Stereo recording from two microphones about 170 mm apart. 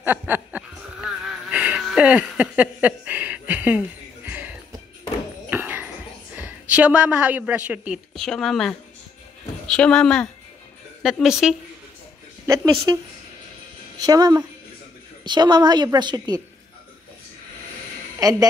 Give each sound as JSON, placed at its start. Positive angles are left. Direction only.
{"t": 0.0, "sound": "chuckle", "side_deg": -10}
{"t": 1.2, "sound": "a sound", "side_deg": -5}
{"t": 9.7, "sound": "speech", "side_deg": 5}
{"t": 12.4, "sound": "a woman's voice", "side_deg": -20}
{"t": 14.0, "sound": "a woman's voice", "side_deg": -20}
{"t": 18.2, "sound": "a woman's voice", "side_deg": -20}